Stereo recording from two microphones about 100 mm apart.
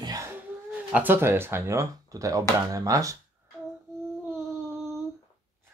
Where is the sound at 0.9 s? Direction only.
20° right (ahead or behind); by 3.2 s 35° right (ahead or behind).